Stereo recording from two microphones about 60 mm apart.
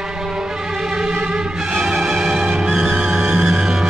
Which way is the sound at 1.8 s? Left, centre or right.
Centre.